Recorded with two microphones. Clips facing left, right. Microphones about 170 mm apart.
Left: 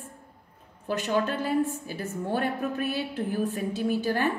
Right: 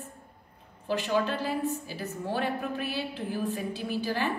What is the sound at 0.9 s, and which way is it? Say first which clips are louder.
A woman's voice: left 1 dB; 50° left (ahead or behind).